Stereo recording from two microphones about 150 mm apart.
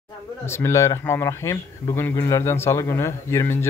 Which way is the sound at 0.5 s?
20° left (ahead or behind).